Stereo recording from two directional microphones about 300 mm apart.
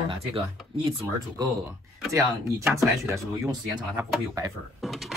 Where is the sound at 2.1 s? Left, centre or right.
Centre.